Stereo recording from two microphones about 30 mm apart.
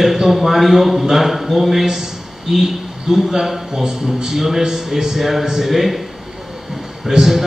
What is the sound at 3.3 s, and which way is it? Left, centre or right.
A man's voice, centre.